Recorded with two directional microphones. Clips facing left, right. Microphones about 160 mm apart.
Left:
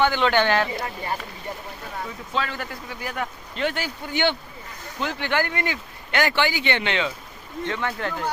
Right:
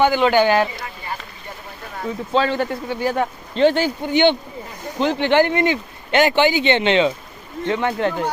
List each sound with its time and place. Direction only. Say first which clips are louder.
0.0 s speech: right 5 dB; 10° right (ahead or behind)
2.0 s a man's voice: right 11 dB; 30° right (ahead or behind)